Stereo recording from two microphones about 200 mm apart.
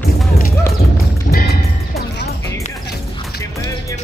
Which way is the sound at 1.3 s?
50° left (ahead or behind).